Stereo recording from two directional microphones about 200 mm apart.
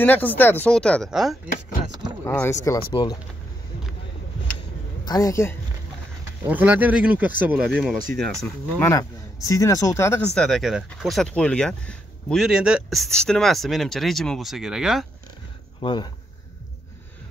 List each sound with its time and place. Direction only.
0.0 s speech: 10° left (ahead or behind)
2.2 s speech: 10° left (ahead or behind)
2.9 s speech: 25° left (ahead or behind)
5.0 s speech: 20° left (ahead or behind)
6.4 s speech: 10° right (ahead or behind); by 10.2 s 15° left (ahead or behind)
10.3 s speech: centre (ahead or behind)
15.8 s speech: 25° left (ahead or behind)